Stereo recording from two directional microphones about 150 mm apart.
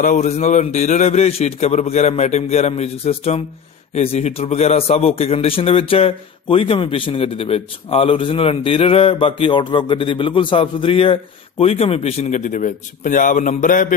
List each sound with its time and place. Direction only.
0.0 s a man's voice: 55° left (ahead or behind)